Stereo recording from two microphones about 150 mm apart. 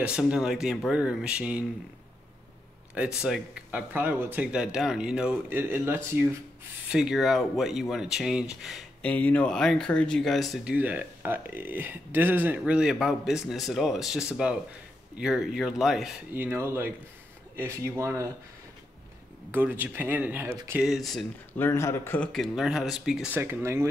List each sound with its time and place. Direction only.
0.0 s speech: 5° right (ahead or behind)
3.2 s speech: 5° right (ahead or behind)
6.9 s speech: 5° right (ahead or behind)
9.0 s speech: 10° left (ahead or behind)
16.3 s speech: 15° right (ahead or behind)
19.5 s speech: 10° right (ahead or behind)
20.8 s speech: centre (ahead or behind)
21.5 s a man's voice: 15° left (ahead or behind)
22.3 s speech: centre (ahead or behind)